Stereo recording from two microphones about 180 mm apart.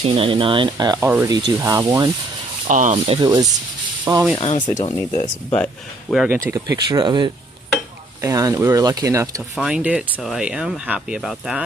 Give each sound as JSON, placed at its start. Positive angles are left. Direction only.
{"t": 0.0, "sound": "speech", "side_deg": -30}
{"t": 2.7, "sound": "speech", "side_deg": -45}
{"t": 3.2, "sound": "speech", "side_deg": -20}
{"t": 4.4, "sound": "speech", "side_deg": 35}
{"t": 5.5, "sound": "speech", "side_deg": 5}
{"t": 6.5, "sound": "speech", "side_deg": -20}